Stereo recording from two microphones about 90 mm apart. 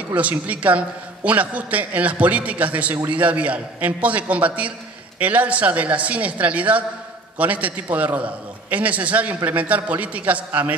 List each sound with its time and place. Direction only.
0.1 s a man's voice: 15° right (ahead or behind)